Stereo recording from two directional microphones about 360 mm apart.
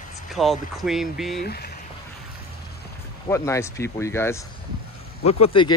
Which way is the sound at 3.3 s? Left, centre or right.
Centre.